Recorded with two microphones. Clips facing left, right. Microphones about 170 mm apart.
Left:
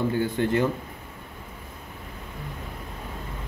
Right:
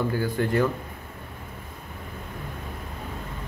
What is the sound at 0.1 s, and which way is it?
Speech, 25° left (ahead or behind).